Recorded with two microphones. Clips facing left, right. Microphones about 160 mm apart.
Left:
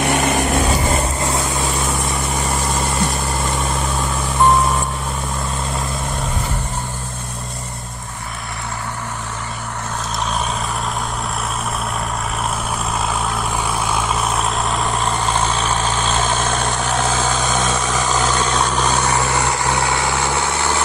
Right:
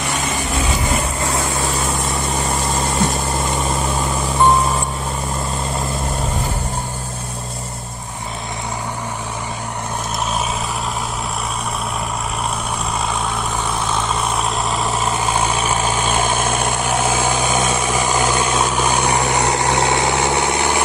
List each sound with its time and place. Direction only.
0.0 s vehicle: 60° left (ahead or behind)
2.6 s vehicle: centre (ahead or behind)
4.4 s vehicle: centre (ahead or behind)
13.8 s vehicle: 5° left (ahead or behind); by 20.8 s 15° right (ahead or behind)